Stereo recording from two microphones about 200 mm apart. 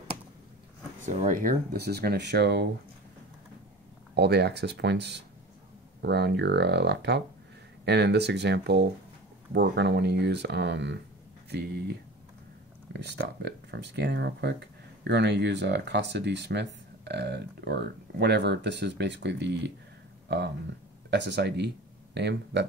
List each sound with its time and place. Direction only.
1.0 s speech: 40° right (ahead or behind); by 2.7 s 55° right (ahead or behind)
4.1 s speech: 55° right (ahead or behind)